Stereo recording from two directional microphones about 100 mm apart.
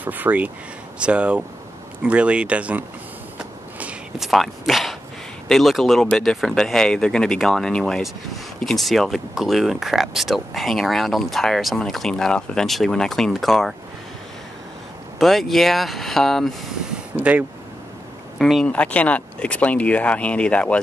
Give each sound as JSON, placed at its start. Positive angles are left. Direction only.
{"t": 0.0, "sound": "speech", "side_deg": -15}
{"t": 3.3, "sound": "walk", "side_deg": -10}
{"t": 4.3, "sound": "speech", "side_deg": 0}
{"t": 15.1, "sound": "speech", "side_deg": 0}
{"t": 17.2, "sound": "speech", "side_deg": -15}
{"t": 18.4, "sound": "speech", "side_deg": 5}